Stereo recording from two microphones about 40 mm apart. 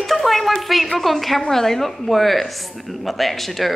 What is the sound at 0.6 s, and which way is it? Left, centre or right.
Speech, centre.